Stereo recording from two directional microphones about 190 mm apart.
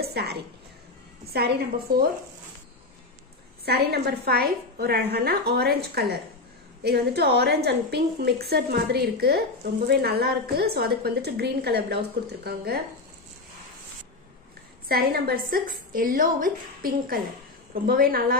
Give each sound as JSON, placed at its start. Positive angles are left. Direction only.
{"t": 0.0, "sound": "a woman's voice", "side_deg": -60}
{"t": 3.6, "sound": "a woman's voice", "side_deg": -60}
{"t": 14.9, "sound": "a woman's voice", "side_deg": -55}